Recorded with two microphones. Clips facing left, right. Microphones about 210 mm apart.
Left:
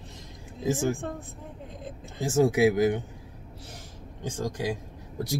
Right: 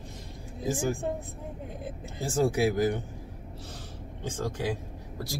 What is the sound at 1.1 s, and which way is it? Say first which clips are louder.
Speech: right 4 dB; 10° right (ahead or behind).